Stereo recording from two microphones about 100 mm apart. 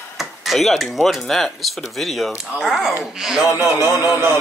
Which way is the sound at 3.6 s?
25° right (ahead or behind).